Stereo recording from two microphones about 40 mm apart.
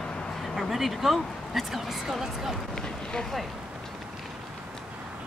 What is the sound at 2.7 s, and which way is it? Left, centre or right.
Speech, centre.